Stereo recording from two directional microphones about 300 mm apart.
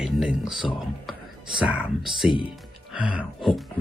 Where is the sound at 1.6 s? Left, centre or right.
Centre.